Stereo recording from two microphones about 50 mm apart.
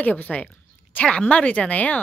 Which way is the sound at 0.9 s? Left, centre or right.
Left.